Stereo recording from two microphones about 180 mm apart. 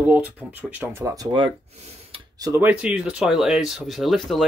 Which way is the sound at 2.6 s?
5° right (ahead or behind).